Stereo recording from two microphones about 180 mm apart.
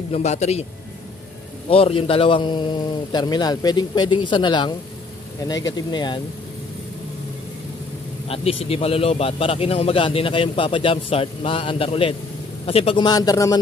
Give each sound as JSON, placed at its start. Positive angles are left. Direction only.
{"t": 0.1, "sound": "a man's voice", "side_deg": 40}
{"t": 1.7, "sound": "a man's voice", "side_deg": 30}
{"t": 8.3, "sound": "a man's voice", "side_deg": 35}